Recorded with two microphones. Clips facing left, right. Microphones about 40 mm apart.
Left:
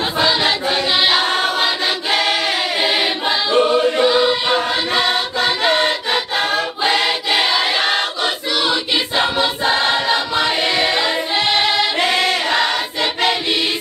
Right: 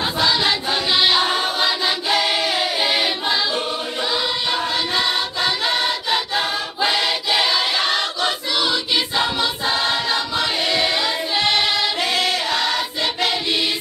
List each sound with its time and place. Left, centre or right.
0.2 s choir: centre
1.2 s choir: left
1.6 s choir: left
3.5 s choir: left
4.1 s choir: centre
4.6 s choir: left
6.1 s music: left
6.8 s choir: left